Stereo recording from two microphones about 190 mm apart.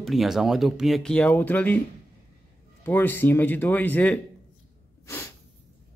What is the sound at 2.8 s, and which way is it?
Speech, 10° left (ahead or behind).